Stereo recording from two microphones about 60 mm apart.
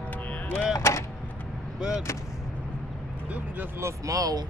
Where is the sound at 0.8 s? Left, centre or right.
Left.